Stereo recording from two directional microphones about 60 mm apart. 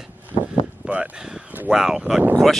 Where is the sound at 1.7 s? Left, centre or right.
Centre.